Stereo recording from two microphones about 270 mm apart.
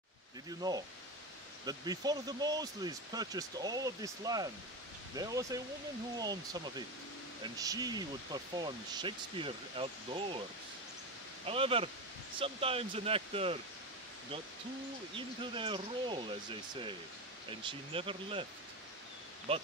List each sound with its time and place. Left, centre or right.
0.5 s speech: centre
11.4 s speech: centre
15.1 s speech: centre
17.5 s speech: centre